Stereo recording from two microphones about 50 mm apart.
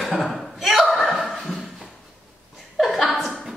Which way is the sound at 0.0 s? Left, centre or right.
Centre.